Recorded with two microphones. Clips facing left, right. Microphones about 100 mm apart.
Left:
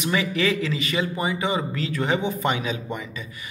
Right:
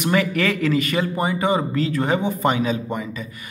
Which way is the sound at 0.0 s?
55° right (ahead or behind).